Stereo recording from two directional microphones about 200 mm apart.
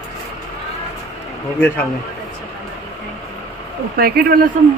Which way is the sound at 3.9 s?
50° right (ahead or behind).